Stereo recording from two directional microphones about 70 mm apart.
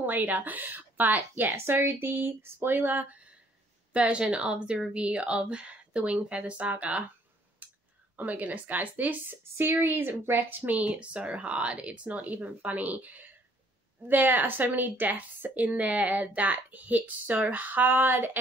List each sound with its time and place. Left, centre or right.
0.0 s a woman's voice: right
3.9 s speech: centre
7.6 s a sound: right
8.2 s a woman's voice: right